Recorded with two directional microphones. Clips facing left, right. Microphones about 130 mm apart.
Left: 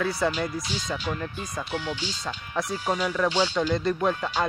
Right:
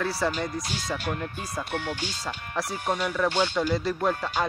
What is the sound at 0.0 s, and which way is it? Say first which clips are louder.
Speech: left 2 dB; centre (ahead or behind).